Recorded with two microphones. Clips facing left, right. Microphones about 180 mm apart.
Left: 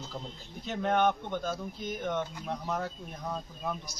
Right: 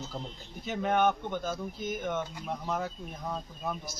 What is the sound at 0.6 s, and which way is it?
Speech, centre (ahead or behind).